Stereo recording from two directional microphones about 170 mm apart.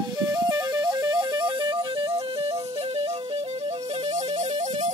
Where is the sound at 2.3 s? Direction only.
35° right (ahead or behind).